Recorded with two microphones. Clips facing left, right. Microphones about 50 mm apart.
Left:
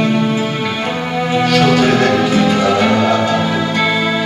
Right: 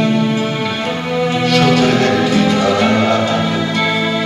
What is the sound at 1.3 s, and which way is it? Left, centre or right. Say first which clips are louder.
Music: left 2 dB; centre.